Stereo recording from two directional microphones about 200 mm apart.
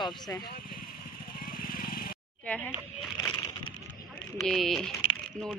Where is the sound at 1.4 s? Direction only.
45° left (ahead or behind).